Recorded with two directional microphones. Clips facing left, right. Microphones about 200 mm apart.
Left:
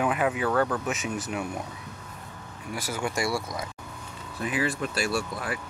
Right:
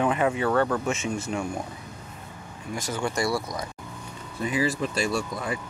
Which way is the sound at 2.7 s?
10° left (ahead or behind).